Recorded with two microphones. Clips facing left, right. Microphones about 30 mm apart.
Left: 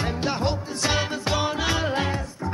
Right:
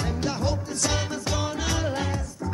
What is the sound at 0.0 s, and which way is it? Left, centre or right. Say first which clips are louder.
Music: left 2 dB; left.